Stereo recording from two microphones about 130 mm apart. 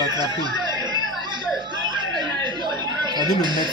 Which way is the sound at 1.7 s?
35° right (ahead or behind).